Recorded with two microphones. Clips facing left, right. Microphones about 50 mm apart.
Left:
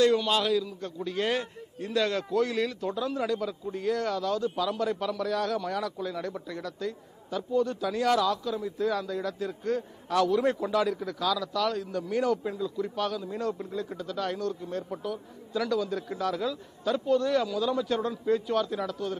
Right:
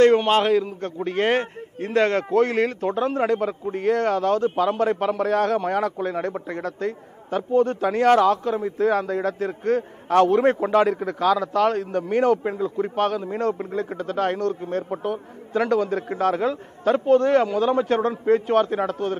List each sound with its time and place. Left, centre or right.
0.0 s a man's voice: right